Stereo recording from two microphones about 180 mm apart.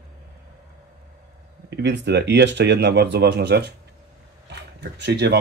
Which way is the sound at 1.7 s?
70° right (ahead or behind).